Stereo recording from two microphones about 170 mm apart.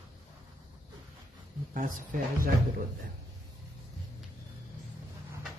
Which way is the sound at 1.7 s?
55° right (ahead or behind).